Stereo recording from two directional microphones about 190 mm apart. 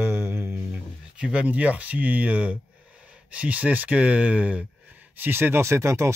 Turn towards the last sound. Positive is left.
turn(degrees=-15)  # may be behind; listen again after turning